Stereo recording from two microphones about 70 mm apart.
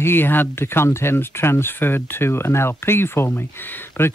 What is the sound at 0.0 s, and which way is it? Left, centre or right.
Speech, left.